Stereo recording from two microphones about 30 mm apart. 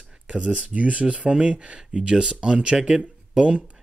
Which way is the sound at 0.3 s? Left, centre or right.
Right.